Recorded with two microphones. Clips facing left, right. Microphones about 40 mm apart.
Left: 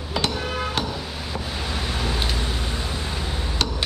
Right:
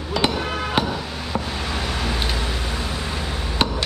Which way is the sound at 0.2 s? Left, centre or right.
Right.